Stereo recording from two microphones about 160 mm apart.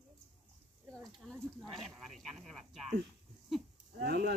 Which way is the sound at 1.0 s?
Centre (ahead or behind).